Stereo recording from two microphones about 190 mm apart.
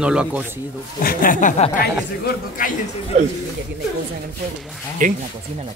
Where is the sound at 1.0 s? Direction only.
50° left (ahead or behind).